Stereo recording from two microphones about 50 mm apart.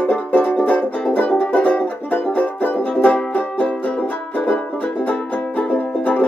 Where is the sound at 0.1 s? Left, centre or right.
Left.